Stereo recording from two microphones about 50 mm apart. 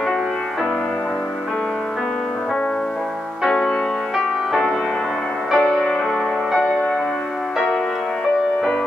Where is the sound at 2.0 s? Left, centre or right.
Centre.